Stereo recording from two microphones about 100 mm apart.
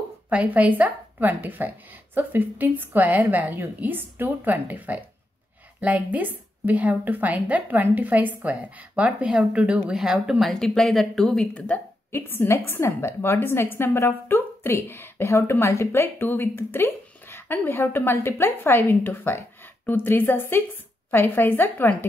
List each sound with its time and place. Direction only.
0.3 s a woman's voice: 15° right (ahead or behind); by 21.9 s 20° left (ahead or behind)